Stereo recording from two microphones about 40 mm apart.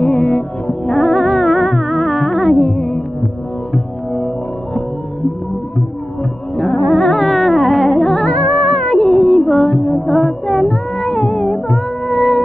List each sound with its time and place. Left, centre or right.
0.0 s music: centre
6.5 s music: centre
9.2 s music: centre
9.8 s music: left
10.0 s music: centre